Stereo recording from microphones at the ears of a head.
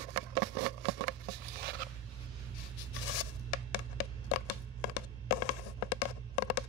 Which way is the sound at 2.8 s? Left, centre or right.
Left.